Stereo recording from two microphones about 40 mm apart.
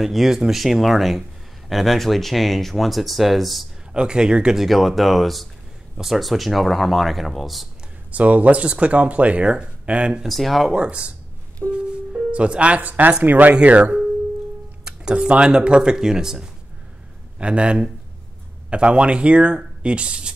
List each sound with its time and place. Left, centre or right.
0.0 s speech: centre
3.9 s speech: right
4.6 s speech: centre
8.1 s speech: right
10.2 s speech: centre
10.7 s speech: right
11.7 s music: right
12.8 s speech: right
13.6 s speech: right
14.9 s speech: right
17.4 s speech: right